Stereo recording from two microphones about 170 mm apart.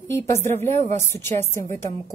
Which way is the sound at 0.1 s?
15° left (ahead or behind).